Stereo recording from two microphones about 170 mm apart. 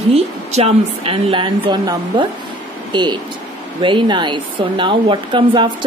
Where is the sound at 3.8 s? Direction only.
30° right (ahead or behind).